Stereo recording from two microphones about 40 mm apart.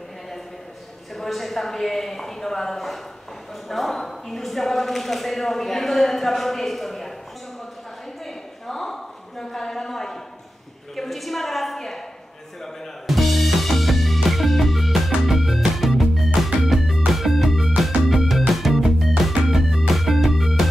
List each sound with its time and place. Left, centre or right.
1.1 s speech: centre
8.6 s a sound: centre
13.0 s music: centre